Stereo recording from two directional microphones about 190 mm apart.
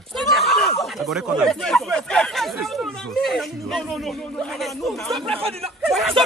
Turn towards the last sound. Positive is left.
turn(degrees=0)  # may be behind; listen again after turning